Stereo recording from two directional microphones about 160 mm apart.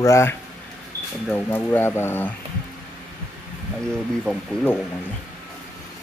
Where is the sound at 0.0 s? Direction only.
20° left (ahead or behind).